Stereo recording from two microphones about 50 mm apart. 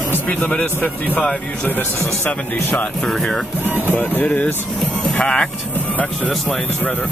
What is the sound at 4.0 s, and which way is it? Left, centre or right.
Speech, left.